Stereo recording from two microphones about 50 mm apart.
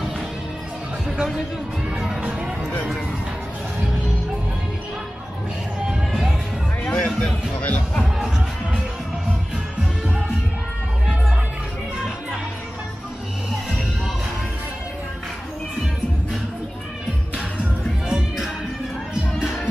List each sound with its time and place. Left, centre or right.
1.0 s music: centre
6.8 s music: left
18.0 s music: centre